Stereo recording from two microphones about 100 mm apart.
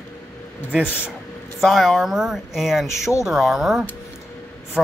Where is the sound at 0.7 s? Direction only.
10° right (ahead or behind).